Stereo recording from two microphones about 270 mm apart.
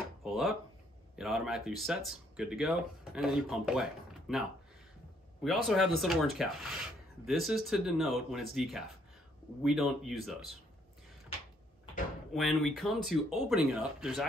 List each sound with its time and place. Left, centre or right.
0.2 s a sound: centre
1.1 s speech: centre
12.4 s speech: centre